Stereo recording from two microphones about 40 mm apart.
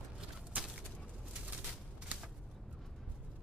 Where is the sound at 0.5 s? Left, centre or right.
Right.